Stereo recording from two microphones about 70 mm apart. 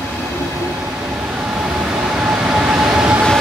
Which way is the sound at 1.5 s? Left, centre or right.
Centre.